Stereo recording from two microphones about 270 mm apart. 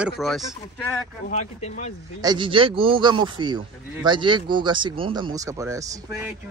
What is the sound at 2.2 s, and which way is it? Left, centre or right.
Speech, centre.